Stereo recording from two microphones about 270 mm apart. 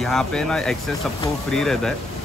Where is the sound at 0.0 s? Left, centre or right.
Centre.